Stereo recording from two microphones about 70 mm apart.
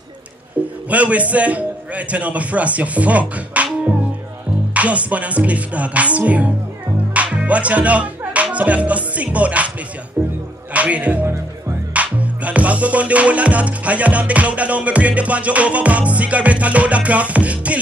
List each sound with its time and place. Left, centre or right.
0.8 s a man's voice: centre
4.7 s music: centre
7.2 s speech: centre
10.7 s music: centre